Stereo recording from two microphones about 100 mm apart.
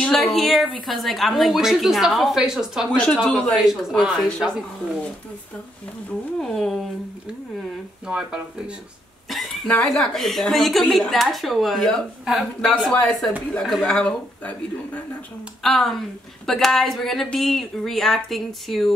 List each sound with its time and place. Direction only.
0.0 s speech: centre (ahead or behind)
2.9 s speech: 10° left (ahead or behind)
3.6 s speech: 5° right (ahead or behind)
6.4 s speech: 5° left (ahead or behind)
8.1 s speech: 10° right (ahead or behind); by 14.5 s 5° left (ahead or behind)
15.6 s speech: 5° left (ahead or behind)